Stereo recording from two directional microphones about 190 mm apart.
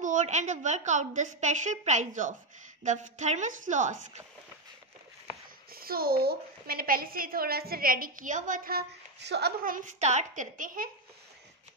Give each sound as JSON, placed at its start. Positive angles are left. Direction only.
{"t": 0.0, "sound": "a woman's voice", "side_deg": -40}
{"t": 5.7, "sound": "a woman's voice", "side_deg": -50}